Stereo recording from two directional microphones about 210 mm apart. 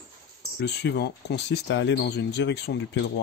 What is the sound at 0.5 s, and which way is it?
Speech, 50° left (ahead or behind).